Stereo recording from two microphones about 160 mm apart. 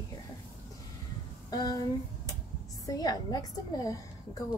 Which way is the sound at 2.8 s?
25° left (ahead or behind).